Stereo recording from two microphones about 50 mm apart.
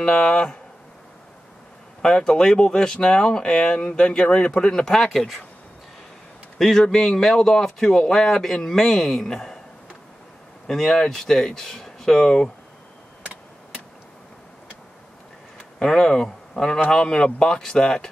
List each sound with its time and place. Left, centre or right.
0.0 s speech: centre
2.0 s speech: centre
6.6 s speech: centre
10.7 s speech: centre
15.5 s speech: centre